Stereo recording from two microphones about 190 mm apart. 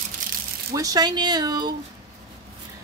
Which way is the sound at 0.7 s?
20° right (ahead or behind).